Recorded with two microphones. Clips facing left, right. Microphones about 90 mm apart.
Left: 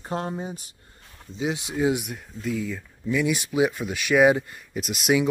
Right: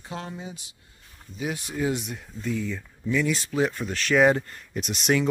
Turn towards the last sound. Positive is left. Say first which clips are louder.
# left 2 dB
turn(degrees=5)  # may be behind; listen again after turning